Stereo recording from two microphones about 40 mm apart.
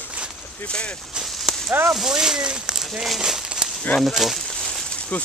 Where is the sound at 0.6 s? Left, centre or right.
Left.